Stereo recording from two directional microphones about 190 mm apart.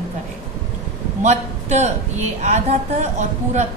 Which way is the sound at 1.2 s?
35° right (ahead or behind).